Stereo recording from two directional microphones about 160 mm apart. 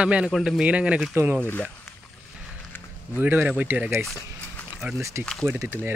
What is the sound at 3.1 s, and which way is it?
Speech, 10° right (ahead or behind).